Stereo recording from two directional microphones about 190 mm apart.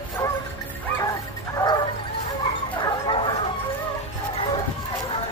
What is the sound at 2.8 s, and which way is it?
Bow-wow, 30° left (ahead or behind).